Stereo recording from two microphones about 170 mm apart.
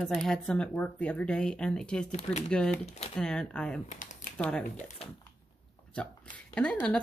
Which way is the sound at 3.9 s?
50° left (ahead or behind).